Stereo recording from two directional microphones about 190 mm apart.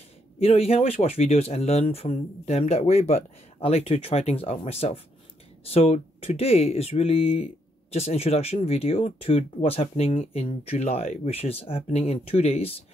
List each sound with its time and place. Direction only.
0.4 s speech: 30° left (ahead or behind)